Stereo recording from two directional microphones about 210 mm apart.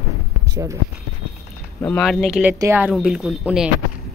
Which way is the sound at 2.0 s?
Centre (ahead or behind).